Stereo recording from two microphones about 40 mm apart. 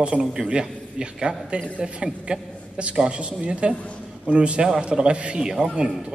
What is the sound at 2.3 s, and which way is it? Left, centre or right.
A man's voice, right.